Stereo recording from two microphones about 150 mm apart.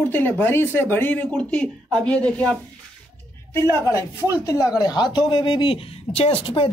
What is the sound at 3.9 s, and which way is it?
Speech, 20° left (ahead or behind).